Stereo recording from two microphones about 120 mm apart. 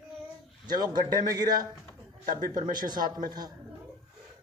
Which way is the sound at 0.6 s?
35° right (ahead or behind).